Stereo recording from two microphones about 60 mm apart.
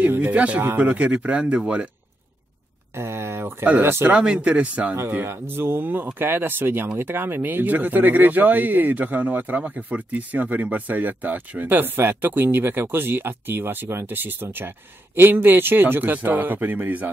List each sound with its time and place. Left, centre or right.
0.1 s speech: right
3.0 s speech: right
4.1 s speech: centre
5.2 s speech: right